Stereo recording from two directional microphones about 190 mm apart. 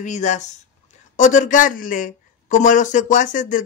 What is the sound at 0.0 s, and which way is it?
Speech, 40° left (ahead or behind).